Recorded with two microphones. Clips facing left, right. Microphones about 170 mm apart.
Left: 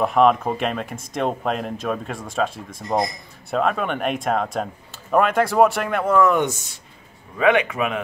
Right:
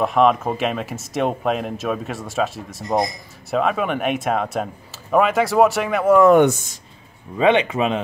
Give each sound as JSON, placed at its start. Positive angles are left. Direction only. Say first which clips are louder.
{"t": 0.0, "sound": "speech", "louder": "even", "side_deg": 0}
{"t": 6.3, "sound": "speech", "louder": "right 8 dB", "side_deg": -55}
{"t": 7.3, "sound": "speech", "louder": "right 2 dB", "side_deg": -25}